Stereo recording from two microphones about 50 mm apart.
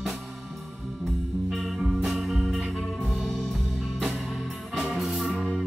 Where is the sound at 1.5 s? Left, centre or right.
Centre.